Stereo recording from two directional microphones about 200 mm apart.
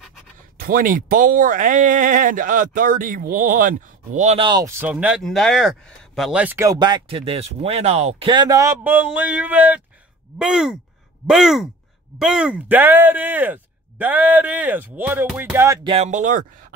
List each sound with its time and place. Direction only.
0.6 s speech: 45° right (ahead or behind)
4.5 s speech: 15° right (ahead or behind)
15.9 s speech: 35° right (ahead or behind)